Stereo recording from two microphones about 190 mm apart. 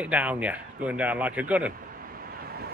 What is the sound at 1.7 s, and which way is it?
Vehicle, 50° right (ahead or behind).